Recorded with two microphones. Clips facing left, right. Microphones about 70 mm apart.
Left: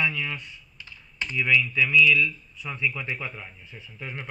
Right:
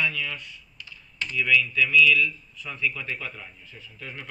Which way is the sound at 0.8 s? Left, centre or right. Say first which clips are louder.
Even; left.